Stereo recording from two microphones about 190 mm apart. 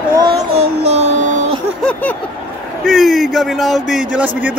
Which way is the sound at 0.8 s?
35° right (ahead or behind).